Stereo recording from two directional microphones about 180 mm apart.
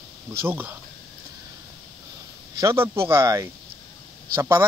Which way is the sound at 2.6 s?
15° right (ahead or behind).